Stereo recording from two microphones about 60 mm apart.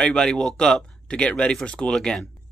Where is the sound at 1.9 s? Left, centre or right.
Centre.